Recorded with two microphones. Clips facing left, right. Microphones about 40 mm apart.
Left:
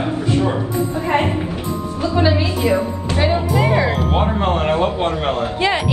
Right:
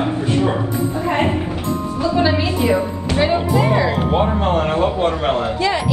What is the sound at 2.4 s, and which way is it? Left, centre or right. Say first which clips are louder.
Speech: right 1 dB; right.